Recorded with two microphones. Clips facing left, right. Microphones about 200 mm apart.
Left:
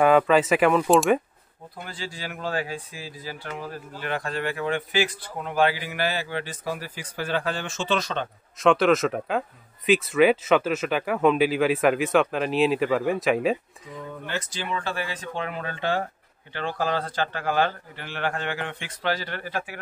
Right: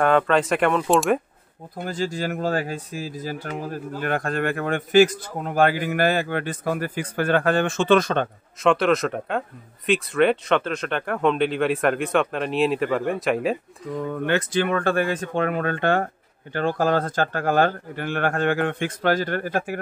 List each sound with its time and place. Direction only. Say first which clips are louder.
0.0 s speech: left 1 dB; 5° left (ahead or behind)
1.8 s speech: right 10 dB; 45° right (ahead or behind)
8.5 s speech: even; centre (ahead or behind)
13.9 s speech: right 9 dB; 65° right (ahead or behind); by 19.8 s 45° right (ahead or behind)